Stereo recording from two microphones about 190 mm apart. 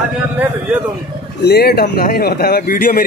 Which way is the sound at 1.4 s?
60° left (ahead or behind).